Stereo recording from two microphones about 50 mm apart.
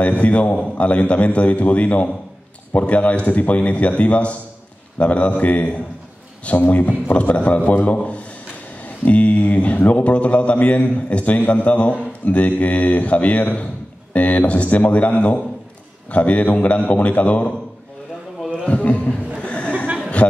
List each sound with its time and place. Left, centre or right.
0.0 s a man's voice: left
19.4 s a sound: left
20.2 s speech: left